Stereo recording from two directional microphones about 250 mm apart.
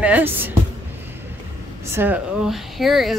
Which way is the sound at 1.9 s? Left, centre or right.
Centre.